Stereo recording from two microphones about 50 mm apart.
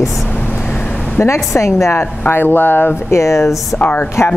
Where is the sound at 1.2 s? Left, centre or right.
Left.